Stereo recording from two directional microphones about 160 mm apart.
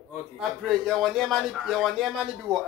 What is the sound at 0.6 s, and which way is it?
Speech, centre (ahead or behind).